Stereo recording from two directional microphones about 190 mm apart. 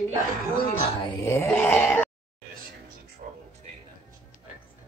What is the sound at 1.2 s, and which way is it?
Groan, 10° left (ahead or behind).